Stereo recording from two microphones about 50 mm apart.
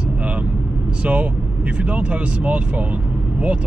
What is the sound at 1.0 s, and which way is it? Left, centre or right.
Speech, right.